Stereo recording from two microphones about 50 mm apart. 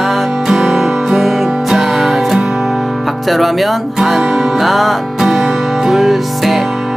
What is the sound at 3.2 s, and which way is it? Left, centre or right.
Music, centre.